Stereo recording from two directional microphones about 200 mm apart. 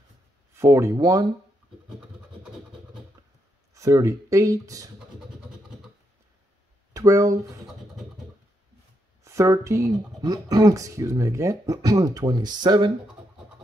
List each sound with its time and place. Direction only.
0.6 s speech: 15° right (ahead or behind)
3.7 s speech: 15° right (ahead or behind)
6.9 s speech: 15° right (ahead or behind)
9.2 s speech: 15° right (ahead or behind)